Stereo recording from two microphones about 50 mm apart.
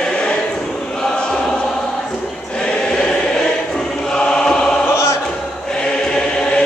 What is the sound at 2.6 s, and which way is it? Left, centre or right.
Choir, centre.